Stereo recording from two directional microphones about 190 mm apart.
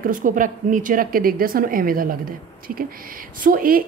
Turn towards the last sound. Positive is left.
turn(degrees=-50)  # may be behind; listen again after turning